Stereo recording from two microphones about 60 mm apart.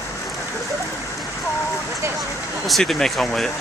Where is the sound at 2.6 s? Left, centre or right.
Centre.